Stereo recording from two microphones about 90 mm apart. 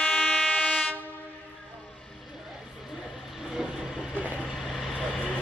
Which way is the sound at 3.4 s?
5° right (ahead or behind).